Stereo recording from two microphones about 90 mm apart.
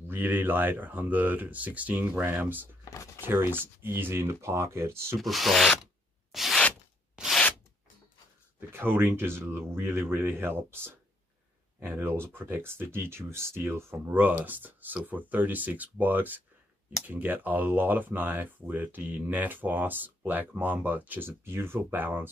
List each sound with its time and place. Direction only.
0.1 s speech: 20° right (ahead or behind)
5.2 s rub: centre (ahead or behind)
6.3 s a sound: centre (ahead or behind)
7.2 s rub: 10° right (ahead or behind)
8.5 s speech: 25° right (ahead or behind)